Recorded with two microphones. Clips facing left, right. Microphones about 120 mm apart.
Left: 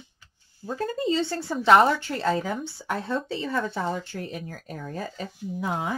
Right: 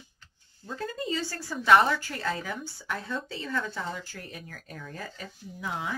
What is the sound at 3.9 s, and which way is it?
Speech, 25° left (ahead or behind).